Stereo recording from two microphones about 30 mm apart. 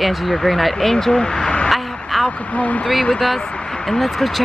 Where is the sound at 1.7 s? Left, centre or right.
Centre.